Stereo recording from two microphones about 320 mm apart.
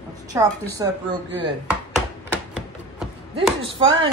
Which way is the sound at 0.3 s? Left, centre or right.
Centre.